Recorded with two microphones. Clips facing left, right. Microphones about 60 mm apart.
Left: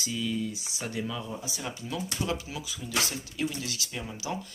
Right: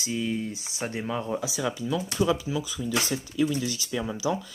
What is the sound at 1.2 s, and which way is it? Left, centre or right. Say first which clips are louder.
Speech: right 8 dB; right.